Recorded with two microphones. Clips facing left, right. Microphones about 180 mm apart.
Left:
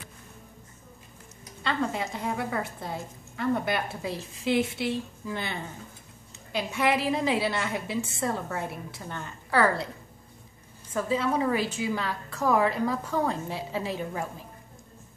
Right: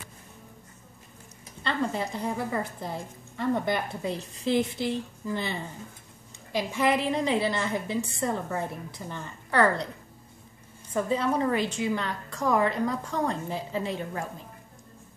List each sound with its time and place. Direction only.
1.6 s a woman's voice: centre (ahead or behind)
6.7 s a woman's voice: 5° left (ahead or behind)
11.1 s a woman's voice: 5° left (ahead or behind)